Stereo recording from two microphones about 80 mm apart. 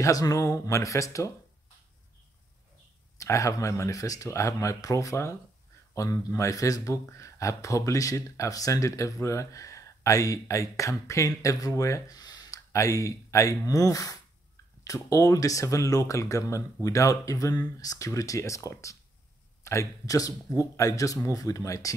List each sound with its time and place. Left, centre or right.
0.0 s speech: left
3.2 s speech: left